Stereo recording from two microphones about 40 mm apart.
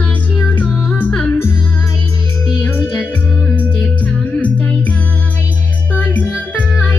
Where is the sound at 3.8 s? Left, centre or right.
Left.